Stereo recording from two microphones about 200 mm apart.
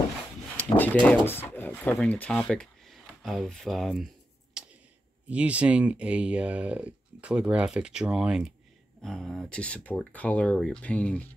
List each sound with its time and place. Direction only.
0.7 s speech: 5° left (ahead or behind)
4.6 s a sound: 5° right (ahead or behind)
5.3 s speech: 5° right (ahead or behind)